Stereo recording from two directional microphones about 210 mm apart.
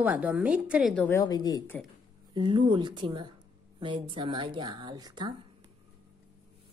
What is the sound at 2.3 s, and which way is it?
A woman's voice, 20° right (ahead or behind).